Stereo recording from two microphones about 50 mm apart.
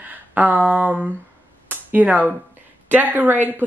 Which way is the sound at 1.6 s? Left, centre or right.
Right.